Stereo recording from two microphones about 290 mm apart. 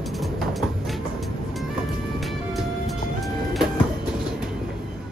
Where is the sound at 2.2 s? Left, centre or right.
Centre.